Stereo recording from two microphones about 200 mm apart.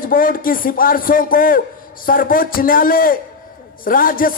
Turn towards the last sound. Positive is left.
turn(degrees=45)  # may be behind; listen again after turning